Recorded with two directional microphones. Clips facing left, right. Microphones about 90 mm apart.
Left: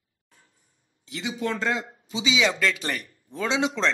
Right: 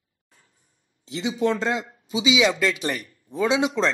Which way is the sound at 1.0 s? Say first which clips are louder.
Right 6 dB; 25° right (ahead or behind).